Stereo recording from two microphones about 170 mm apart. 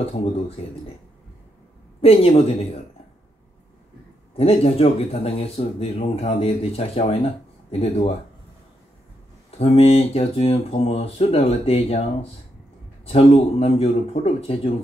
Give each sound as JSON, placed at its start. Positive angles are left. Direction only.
{"t": 2.0, "sound": "speech", "side_deg": 35}
{"t": 4.4, "sound": "speech", "side_deg": 35}
{"t": 9.6, "sound": "speech", "side_deg": 35}